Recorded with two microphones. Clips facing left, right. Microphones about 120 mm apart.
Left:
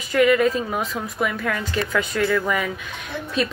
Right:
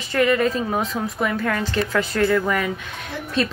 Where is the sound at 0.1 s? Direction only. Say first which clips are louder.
Left 2 dB; 35° right (ahead or behind).